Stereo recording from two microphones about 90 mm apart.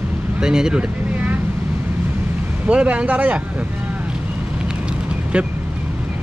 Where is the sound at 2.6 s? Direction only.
15° right (ahead or behind).